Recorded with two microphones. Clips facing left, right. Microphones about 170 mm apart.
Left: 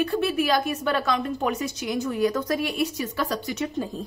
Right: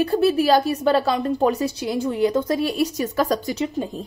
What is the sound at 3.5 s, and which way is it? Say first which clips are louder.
Speech: right 4 dB; 30° right (ahead or behind).